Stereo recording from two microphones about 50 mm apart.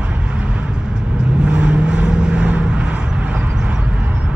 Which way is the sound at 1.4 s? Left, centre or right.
Centre.